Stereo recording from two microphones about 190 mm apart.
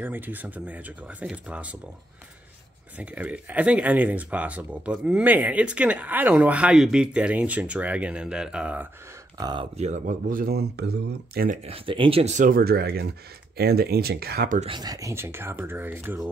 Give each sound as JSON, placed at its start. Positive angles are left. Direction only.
{"t": 0.0, "sound": "speech", "side_deg": -10}
{"t": 3.0, "sound": "speech", "side_deg": -10}
{"t": 9.4, "sound": "speech", "side_deg": -25}
{"t": 9.8, "sound": "speech", "side_deg": -40}
{"t": 11.6, "sound": "speech", "side_deg": -30}
{"t": 14.6, "sound": "speech", "side_deg": -25}